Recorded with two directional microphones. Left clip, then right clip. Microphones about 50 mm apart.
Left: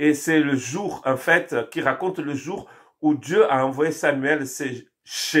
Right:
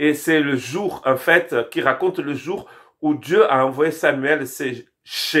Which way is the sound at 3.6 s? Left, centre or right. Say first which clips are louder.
Right 3 dB; right.